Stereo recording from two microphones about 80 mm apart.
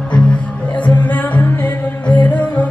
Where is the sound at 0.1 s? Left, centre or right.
Centre.